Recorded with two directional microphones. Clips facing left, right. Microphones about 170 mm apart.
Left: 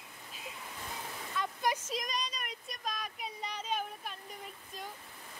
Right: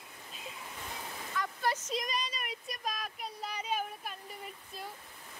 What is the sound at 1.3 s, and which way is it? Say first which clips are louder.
Waterfall: even; 20° left (ahead or behind).